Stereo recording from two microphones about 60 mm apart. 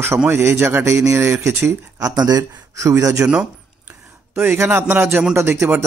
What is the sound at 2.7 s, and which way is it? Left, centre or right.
Speech, right.